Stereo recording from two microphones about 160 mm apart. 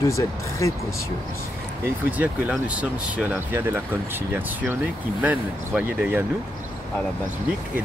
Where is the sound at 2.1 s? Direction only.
10° right (ahead or behind).